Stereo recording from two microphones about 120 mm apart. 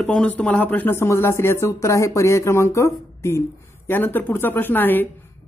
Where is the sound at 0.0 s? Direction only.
5° left (ahead or behind).